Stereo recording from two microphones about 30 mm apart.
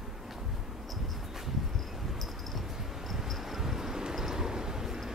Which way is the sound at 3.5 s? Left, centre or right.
Centre.